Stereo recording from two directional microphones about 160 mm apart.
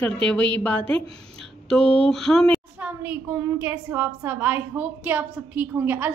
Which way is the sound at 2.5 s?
10° right (ahead or behind).